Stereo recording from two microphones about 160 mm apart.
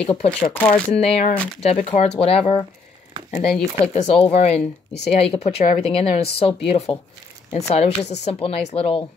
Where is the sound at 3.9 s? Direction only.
40° left (ahead or behind).